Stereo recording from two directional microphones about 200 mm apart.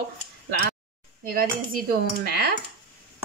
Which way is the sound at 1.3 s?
45° right (ahead or behind).